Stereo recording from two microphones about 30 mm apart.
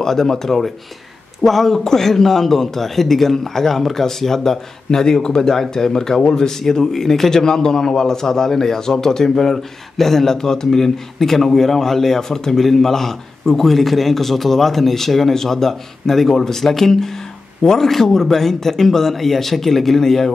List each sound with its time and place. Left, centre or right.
0.0 s speech: centre